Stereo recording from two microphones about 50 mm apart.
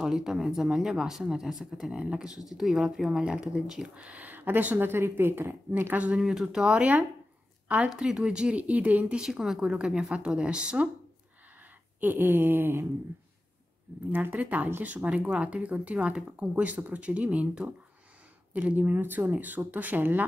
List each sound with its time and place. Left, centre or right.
0.0 s speech: centre
2.0 s speech: centre
3.9 s speech: right
6.2 s a woman's voice: centre
8.0 s speech: centre
8.5 s speech: right
9.2 s speech: centre
12.0 s speech: right
14.1 s speech: right